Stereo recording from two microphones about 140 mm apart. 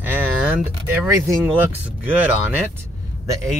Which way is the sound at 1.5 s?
10° right (ahead or behind).